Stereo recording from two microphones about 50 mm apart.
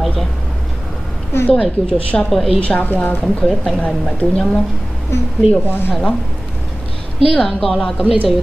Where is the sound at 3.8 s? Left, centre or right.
Left.